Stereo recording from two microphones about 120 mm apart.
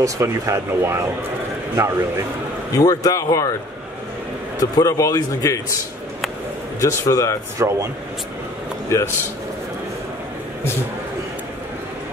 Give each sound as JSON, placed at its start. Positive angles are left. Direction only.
{"t": 0.0, "sound": "speech", "side_deg": -25}
{"t": 2.8, "sound": "a man's voice", "side_deg": 30}
{"t": 4.6, "sound": "a man's voice", "side_deg": 30}
{"t": 6.8, "sound": "a man's voice", "side_deg": 25}
{"t": 7.5, "sound": "speech", "side_deg": -25}
{"t": 8.8, "sound": "a man's voice", "side_deg": 20}